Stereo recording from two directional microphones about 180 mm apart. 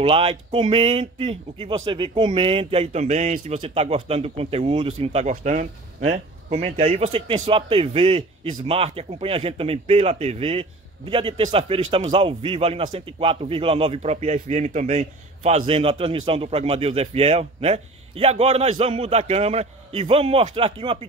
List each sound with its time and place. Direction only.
0.0 s speech: 35° right (ahead or behind)